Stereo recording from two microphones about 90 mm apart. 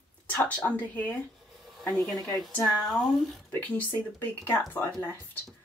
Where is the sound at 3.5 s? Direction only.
20° left (ahead or behind).